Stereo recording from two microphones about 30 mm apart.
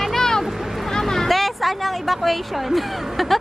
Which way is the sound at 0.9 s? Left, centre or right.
Centre.